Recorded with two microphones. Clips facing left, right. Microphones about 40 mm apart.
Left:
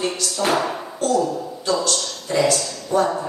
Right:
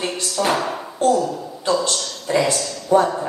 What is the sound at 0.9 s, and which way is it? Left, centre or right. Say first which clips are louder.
Speech: right 3 dB; right.